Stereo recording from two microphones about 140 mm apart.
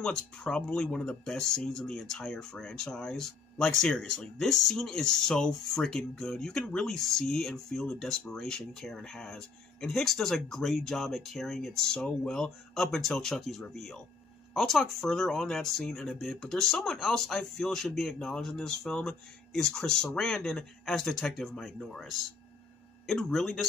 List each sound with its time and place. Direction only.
0.0 s speech: 5° left (ahead or behind)